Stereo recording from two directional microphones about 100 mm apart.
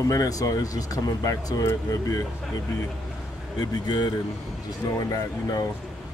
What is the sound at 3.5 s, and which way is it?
Speech, 45° left (ahead or behind).